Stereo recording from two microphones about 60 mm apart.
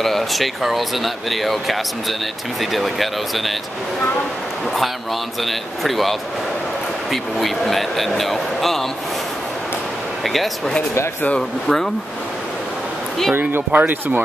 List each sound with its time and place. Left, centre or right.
0.0 s speech: centre
5.4 s speech: centre
10.2 s speech: centre
11.6 s speech: centre
13.3 s speech: right